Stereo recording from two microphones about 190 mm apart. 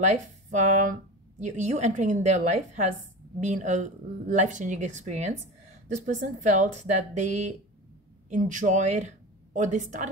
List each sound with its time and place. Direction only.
0.0 s a woman's voice: 40° right (ahead or behind)